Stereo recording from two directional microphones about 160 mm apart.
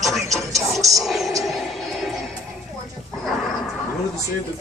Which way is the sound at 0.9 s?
Centre (ahead or behind).